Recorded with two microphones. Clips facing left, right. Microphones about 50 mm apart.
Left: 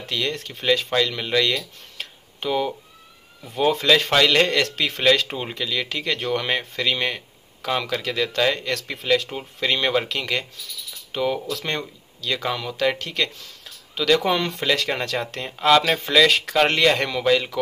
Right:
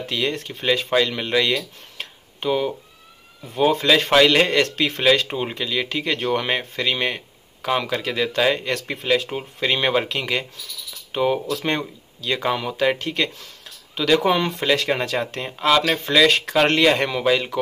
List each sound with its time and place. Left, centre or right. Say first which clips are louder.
0.0 s speech: right 2 dB; centre